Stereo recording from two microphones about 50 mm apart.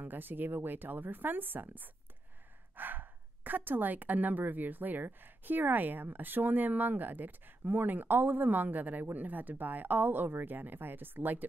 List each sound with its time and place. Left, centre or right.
0.0 s speech: right